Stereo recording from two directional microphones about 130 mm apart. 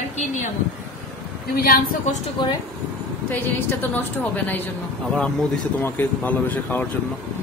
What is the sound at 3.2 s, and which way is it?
A woman's voice, 15° left (ahead or behind).